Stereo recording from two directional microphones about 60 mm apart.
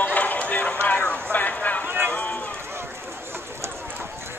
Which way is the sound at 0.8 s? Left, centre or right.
Left.